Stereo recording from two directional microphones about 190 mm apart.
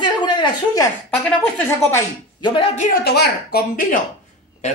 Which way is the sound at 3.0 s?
55° left (ahead or behind).